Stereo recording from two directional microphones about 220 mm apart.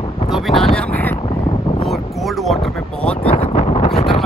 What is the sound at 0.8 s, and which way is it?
Boat, 10° left (ahead or behind).